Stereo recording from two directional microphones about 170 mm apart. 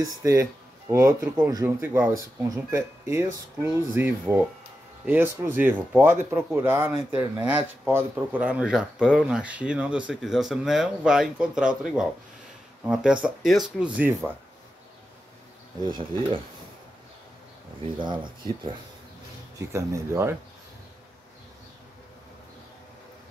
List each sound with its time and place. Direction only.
0.0 s speech: 15° right (ahead or behind)
17.9 s speech: 25° right (ahead or behind)
19.6 s speech: 15° right (ahead or behind)